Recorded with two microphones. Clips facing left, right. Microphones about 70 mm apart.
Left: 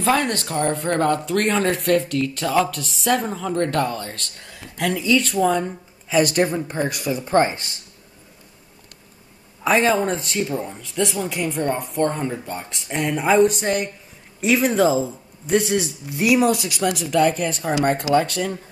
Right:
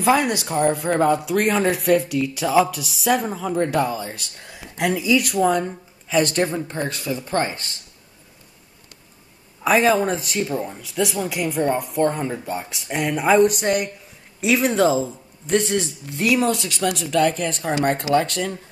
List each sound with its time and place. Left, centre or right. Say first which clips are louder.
0.0 s speech: right 2 dB; centre; by 7.7 s left
9.6 s speech: right 1 dB; centre